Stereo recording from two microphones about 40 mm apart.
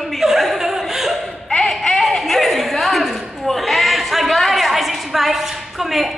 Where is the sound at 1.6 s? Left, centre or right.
Centre.